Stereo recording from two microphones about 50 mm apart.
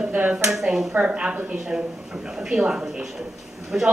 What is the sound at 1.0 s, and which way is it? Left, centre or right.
A woman's voice, right.